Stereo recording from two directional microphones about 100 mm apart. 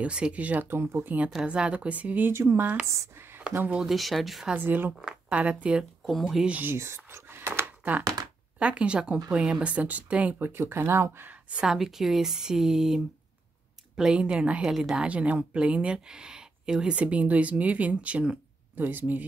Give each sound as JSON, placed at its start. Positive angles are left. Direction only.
{"t": 0.0, "sound": "a woman's voice", "side_deg": -10}
{"t": 3.8, "sound": "speech", "side_deg": 0}
{"t": 4.6, "sound": "a woman's voice", "side_deg": -20}
{"t": 6.0, "sound": "speech", "side_deg": 0}
{"t": 6.5, "sound": "a woman's voice", "side_deg": -20}